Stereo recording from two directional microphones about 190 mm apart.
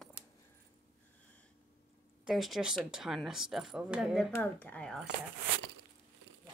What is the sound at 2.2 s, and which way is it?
Speech, centre (ahead or behind).